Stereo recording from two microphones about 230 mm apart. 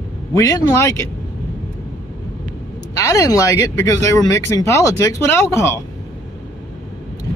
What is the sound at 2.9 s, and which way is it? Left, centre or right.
Speech, centre.